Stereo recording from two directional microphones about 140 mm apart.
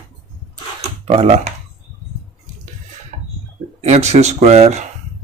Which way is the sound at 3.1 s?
60° right (ahead or behind).